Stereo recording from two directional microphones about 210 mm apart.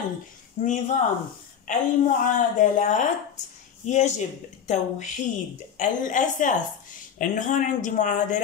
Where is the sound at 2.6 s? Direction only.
35° left (ahead or behind).